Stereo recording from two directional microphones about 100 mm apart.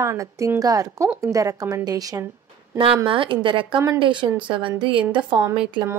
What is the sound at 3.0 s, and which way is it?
A woman's voice, 60° right (ahead or behind).